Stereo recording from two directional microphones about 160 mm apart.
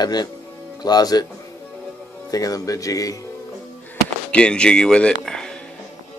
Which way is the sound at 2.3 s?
20° left (ahead or behind).